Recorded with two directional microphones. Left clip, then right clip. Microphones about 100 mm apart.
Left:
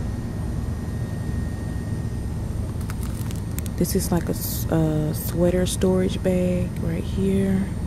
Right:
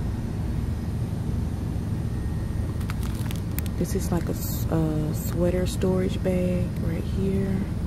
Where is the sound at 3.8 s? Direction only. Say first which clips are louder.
Left 5 dB; 15° left (ahead or behind).